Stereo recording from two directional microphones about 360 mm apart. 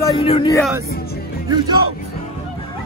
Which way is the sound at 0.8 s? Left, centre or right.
Left.